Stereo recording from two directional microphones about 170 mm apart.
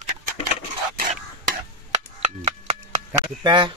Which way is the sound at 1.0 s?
55° right (ahead or behind).